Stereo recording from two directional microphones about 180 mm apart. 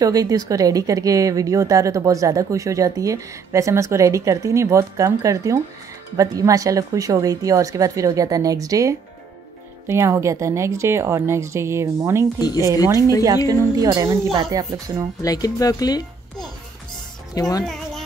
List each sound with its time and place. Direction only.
0.0 s a woman's voice: 20° right (ahead or behind)
13.5 s a woman's voice: 20° right (ahead or behind)
15.2 s a woman's voice: 20° left (ahead or behind)